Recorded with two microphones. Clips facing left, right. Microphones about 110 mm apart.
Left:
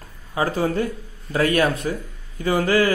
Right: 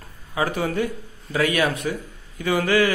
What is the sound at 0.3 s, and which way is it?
A man's voice, 35° left (ahead or behind).